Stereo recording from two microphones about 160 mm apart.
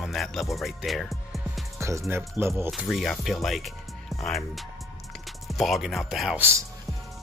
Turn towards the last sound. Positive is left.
turn(degrees=-15)  # may be behind; listen again after turning